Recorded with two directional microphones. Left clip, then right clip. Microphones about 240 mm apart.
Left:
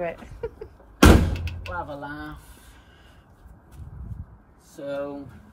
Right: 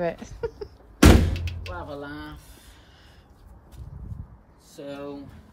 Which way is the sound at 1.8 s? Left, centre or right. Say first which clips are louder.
Left 3 dB; centre.